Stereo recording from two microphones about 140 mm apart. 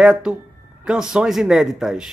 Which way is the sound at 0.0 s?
5° right (ahead or behind).